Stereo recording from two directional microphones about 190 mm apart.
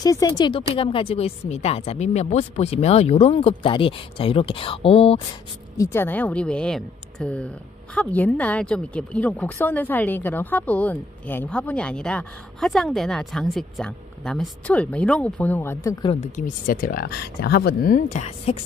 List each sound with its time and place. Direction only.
0.0 s a woman's voice: 20° left (ahead or behind)
5.8 s speech: 15° left (ahead or behind)
16.1 s speech: 40° left (ahead or behind)